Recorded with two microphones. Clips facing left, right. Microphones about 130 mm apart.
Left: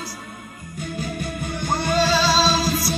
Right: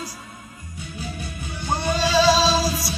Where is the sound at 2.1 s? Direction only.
15° right (ahead or behind).